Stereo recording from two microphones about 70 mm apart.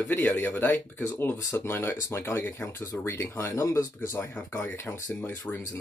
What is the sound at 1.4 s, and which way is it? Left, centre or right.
Speech, left.